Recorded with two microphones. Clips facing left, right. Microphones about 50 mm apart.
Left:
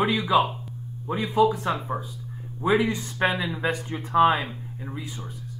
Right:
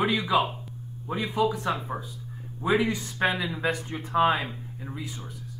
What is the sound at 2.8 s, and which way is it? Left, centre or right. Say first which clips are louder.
Speech: left 2 dB; centre.